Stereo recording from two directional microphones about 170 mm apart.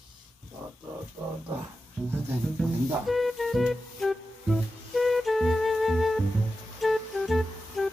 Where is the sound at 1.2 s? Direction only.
10° right (ahead or behind).